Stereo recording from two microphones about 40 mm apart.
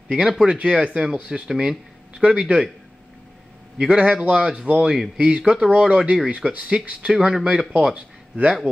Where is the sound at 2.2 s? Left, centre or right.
Right.